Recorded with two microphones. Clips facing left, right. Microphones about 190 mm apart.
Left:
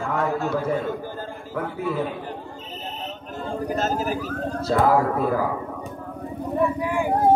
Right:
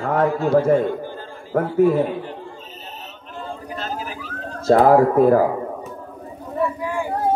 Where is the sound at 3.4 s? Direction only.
45° left (ahead or behind).